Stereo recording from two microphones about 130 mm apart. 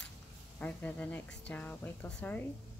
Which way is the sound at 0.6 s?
10° left (ahead or behind).